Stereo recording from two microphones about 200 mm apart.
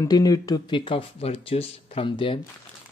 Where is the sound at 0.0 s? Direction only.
20° left (ahead or behind).